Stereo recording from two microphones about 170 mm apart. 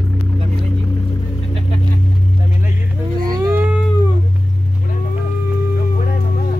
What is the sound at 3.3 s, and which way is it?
Cat, 20° right (ahead or behind).